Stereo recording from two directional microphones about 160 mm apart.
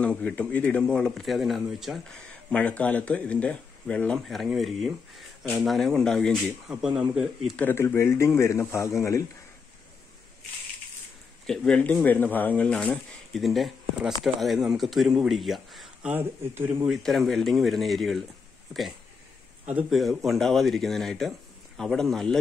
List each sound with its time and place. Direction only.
0.0 s speech: 5° left (ahead or behind)
7.5 s a man's voice: 15° left (ahead or behind)
11.4 s speech: 5° left (ahead or behind)